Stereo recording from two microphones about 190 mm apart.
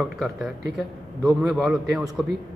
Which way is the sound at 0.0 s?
Centre (ahead or behind).